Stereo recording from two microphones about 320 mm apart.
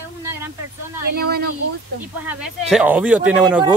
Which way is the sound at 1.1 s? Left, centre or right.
Right.